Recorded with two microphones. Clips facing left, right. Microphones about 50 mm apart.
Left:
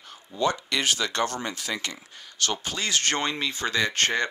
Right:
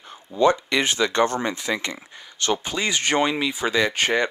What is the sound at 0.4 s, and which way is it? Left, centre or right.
Speech, right.